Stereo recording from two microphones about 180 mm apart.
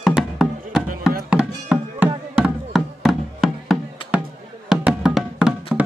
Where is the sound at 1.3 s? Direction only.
5° right (ahead or behind).